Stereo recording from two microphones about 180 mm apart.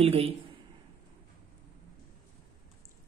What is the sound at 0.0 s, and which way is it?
Speech, 30° right (ahead or behind).